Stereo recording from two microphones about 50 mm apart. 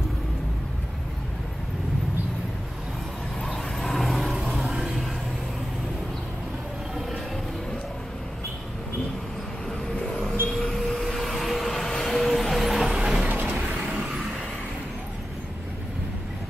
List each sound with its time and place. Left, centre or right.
3.4 s vehicle: centre
4.3 s a sound: centre
10.6 s vehicle: centre
13.3 s vehicle: right